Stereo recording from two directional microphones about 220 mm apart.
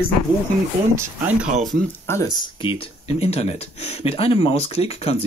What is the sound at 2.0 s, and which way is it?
Speech, 15° left (ahead or behind).